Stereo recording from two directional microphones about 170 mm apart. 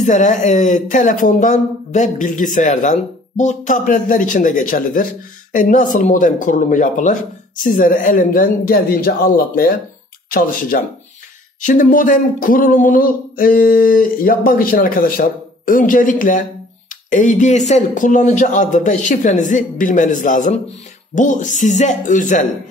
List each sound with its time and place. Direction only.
0.0 s speech: 45° left (ahead or behind)